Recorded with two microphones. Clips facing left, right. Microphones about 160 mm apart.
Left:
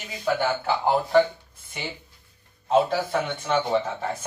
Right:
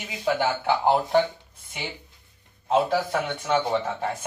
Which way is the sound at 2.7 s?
10° right (ahead or behind).